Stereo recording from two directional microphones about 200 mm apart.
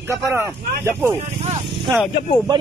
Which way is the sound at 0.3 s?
10° right (ahead or behind).